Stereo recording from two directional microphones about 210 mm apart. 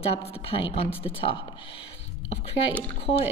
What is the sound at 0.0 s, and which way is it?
A woman's voice, 30° left (ahead or behind).